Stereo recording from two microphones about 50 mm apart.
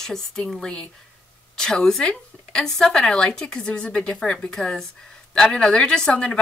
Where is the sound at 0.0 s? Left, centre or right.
Centre.